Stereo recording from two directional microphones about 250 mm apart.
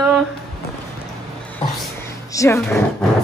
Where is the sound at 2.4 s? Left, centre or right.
Centre.